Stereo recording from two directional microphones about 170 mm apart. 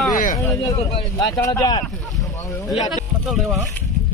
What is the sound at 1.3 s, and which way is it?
Speech, 20° left (ahead or behind).